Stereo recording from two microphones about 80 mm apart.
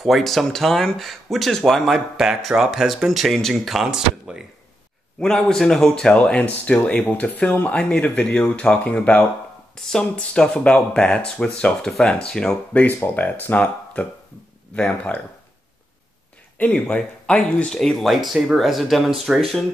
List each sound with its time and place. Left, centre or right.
0.0 s speech: centre
5.2 s speech: centre
9.8 s speech: centre
16.5 s speech: centre